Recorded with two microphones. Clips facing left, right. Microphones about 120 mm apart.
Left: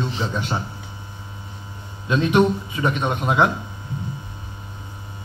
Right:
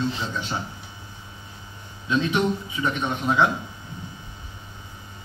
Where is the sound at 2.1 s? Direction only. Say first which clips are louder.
Left 5 dB; 60° left (ahead or behind).